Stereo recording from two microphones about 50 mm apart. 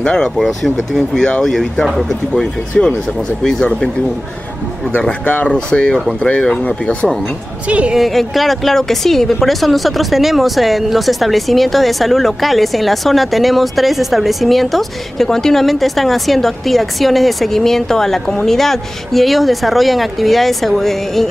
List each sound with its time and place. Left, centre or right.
0.0 s speech: centre
0.4 s speech: centre
5.2 s speech: left
5.5 s speech: centre
7.6 s a woman's voice: right
7.9 s speech: centre